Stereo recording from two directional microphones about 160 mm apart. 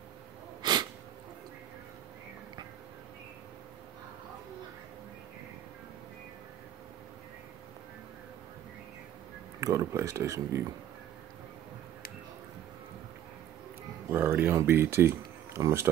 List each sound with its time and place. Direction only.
0.6 s sneeze: 25° right (ahead or behind)
9.6 s speech: 20° right (ahead or behind)
14.1 s speech: 15° right (ahead or behind)